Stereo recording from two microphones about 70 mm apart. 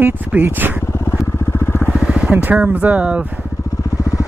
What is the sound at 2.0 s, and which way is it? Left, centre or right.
Speech, centre.